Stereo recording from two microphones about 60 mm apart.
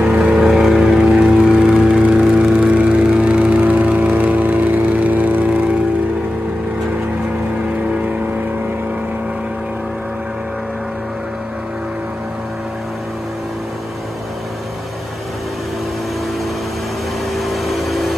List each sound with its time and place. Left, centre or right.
0.0 s vehicle: centre
17.4 s vehicle: centre